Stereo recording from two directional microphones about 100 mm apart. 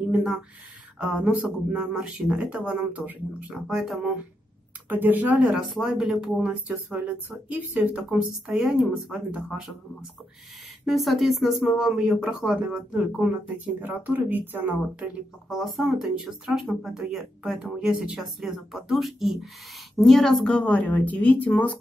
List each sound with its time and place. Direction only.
0.1 s speech: 5° right (ahead or behind)
3.6 s speech: centre (ahead or behind)
4.8 s speech: 20° right (ahead or behind); by 9.2 s centre (ahead or behind)
10.9 s speech: centre (ahead or behind); by 15.0 s 20° right (ahead or behind)
15.5 s speech: centre (ahead or behind); by 21.7 s 15° left (ahead or behind)